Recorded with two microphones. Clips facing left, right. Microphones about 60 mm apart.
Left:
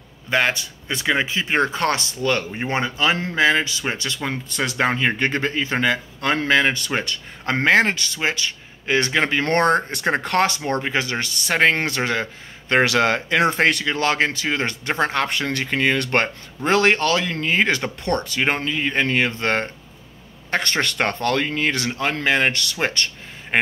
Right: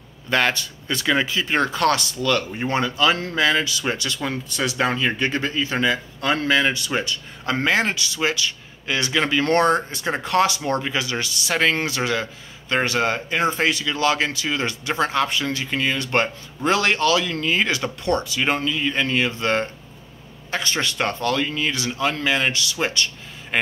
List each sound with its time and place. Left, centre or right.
0.3 s speech: centre; by 12.7 s left
12.7 s speech: left